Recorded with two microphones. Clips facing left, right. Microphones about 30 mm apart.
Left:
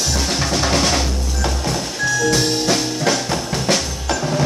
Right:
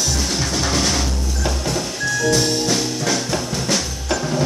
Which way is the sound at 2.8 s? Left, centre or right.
Left.